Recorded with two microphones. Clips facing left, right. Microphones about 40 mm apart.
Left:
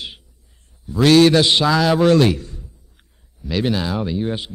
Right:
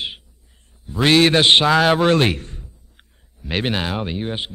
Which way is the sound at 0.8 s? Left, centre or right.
Right.